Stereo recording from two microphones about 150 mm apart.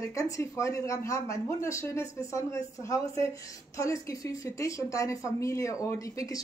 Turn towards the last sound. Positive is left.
turn(degrees=20)  # may be behind; listen again after turning